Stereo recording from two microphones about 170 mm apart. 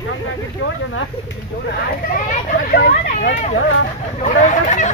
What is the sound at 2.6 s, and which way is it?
Speech, 60° left (ahead or behind).